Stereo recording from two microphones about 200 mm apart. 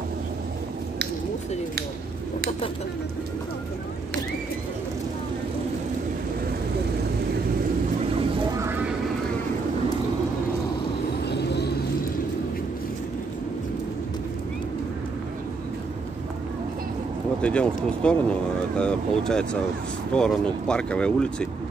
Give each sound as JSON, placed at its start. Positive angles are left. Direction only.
{"t": 11.2, "sound": "vehicle", "side_deg": 55}
{"t": 17.4, "sound": "speech", "side_deg": 5}